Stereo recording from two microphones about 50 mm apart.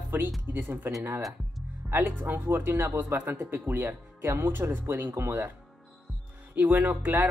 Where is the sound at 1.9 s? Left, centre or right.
Right.